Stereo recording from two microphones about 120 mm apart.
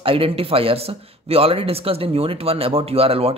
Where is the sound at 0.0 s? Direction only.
50° right (ahead or behind).